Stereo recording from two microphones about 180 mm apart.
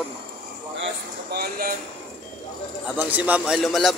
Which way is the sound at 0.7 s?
75° right (ahead or behind).